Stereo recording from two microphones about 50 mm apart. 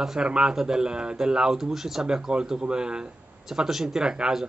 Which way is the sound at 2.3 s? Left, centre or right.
Centre.